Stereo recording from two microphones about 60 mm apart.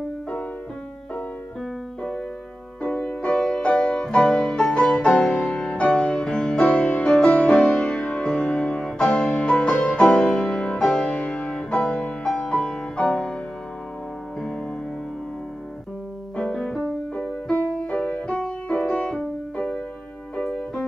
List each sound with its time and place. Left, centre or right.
2.8 s music: centre
6.6 s music: left; by 9.4 s centre
9.4 s music: centre
16.5 s music: centre
17.1 s music: left